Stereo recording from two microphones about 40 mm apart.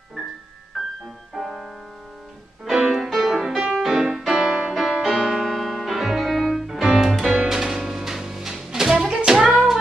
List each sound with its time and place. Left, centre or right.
0.2 s music: centre
2.8 s music: centre
3.1 s music: centre
3.3 s music: centre